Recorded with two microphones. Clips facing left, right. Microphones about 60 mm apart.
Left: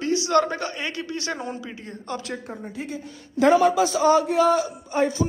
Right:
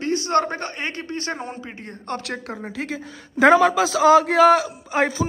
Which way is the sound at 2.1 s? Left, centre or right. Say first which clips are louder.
Right 3 dB; right.